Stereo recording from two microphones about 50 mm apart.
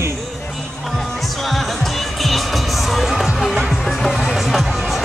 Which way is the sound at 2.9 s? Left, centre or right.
Centre.